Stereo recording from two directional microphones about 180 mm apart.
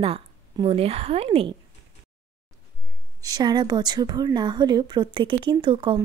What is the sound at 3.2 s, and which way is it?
Speech, 20° right (ahead or behind).